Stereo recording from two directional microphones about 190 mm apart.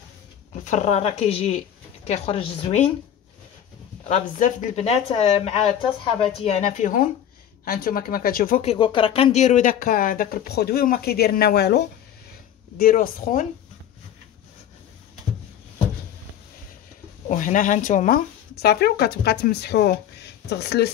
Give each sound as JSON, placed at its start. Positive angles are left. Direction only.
{"t": 0.7, "sound": "speech", "side_deg": 35}
{"t": 4.1, "sound": "speech", "side_deg": 40}
{"t": 8.6, "sound": "speech", "side_deg": 25}
{"t": 12.7, "sound": "speech", "side_deg": 50}
{"t": 17.3, "sound": "speech", "side_deg": 45}